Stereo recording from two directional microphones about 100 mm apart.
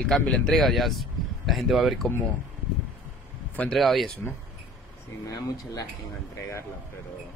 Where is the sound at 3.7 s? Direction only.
Centre (ahead or behind).